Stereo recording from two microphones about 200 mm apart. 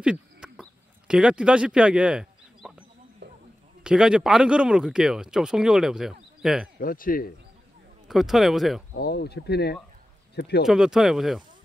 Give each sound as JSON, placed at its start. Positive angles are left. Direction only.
{"t": 0.0, "sound": "a sound", "side_deg": -5}
{"t": 3.2, "sound": "a sound", "side_deg": -60}
{"t": 3.8, "sound": "speech", "side_deg": -5}
{"t": 6.8, "sound": "speech", "side_deg": 45}
{"t": 8.1, "sound": "speech", "side_deg": 0}
{"t": 8.9, "sound": "speech", "side_deg": 55}
{"t": 10.6, "sound": "speech", "side_deg": 0}